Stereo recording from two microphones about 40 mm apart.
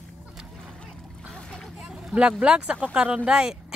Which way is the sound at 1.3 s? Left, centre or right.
Centre.